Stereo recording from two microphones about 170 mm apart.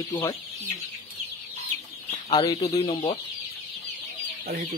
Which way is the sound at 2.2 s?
25° left (ahead or behind).